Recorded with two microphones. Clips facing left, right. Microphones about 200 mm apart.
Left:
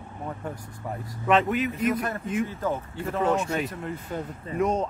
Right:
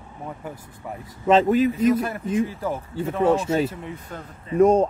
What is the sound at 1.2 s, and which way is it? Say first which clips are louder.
Speech: right 5 dB; 30° right (ahead or behind).